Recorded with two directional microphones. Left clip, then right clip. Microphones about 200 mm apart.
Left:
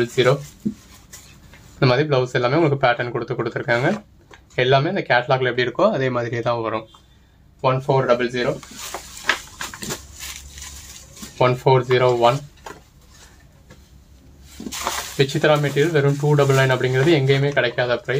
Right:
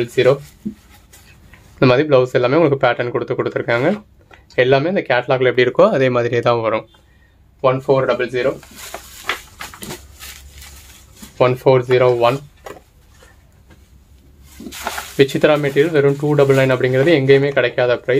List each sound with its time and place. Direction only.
0.0 s speech: 40° right (ahead or behind)
1.8 s speech: 45° right (ahead or behind)
11.3 s speech: 40° right (ahead or behind)
15.1 s speech: 50° right (ahead or behind)